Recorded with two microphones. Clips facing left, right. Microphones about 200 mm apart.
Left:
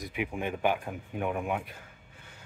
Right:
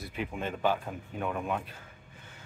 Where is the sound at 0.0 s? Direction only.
15° left (ahead or behind).